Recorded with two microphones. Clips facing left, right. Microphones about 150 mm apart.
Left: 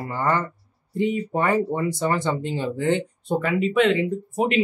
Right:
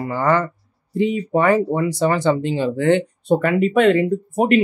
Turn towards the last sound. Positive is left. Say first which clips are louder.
# right 6 dB
turn(degrees=-50)  # may be behind; listen again after turning